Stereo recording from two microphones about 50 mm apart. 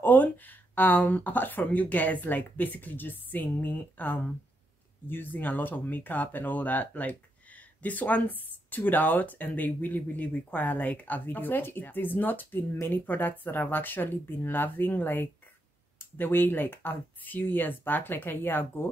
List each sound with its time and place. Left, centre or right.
0.0 s speech: left